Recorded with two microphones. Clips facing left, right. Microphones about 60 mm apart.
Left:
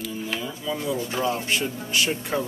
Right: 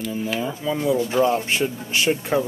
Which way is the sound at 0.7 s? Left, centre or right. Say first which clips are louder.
Right 6 dB; right.